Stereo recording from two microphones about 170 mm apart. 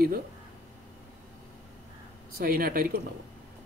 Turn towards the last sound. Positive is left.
turn(degrees=-60)  # may be behind; listen again after turning